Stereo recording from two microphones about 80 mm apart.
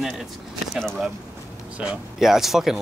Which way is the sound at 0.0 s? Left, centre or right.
Centre.